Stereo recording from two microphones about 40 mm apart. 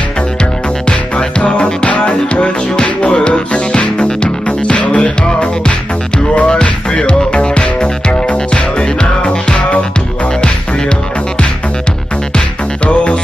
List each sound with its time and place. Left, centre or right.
1.4 s music: left
12.8 s music: left